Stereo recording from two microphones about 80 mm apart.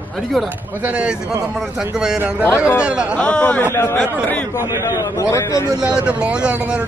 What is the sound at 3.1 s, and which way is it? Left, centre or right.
Speech, centre.